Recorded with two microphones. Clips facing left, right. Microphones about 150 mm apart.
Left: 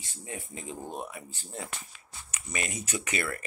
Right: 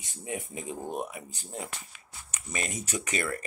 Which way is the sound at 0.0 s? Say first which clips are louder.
Right 5 dB; 20° right (ahead or behind).